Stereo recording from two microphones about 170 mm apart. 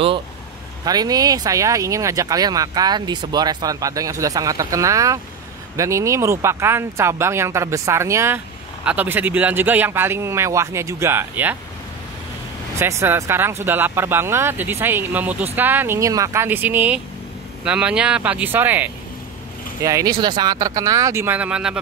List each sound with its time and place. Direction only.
0.8 s speech: 20° right (ahead or behind)
12.7 s speech: 15° right (ahead or behind)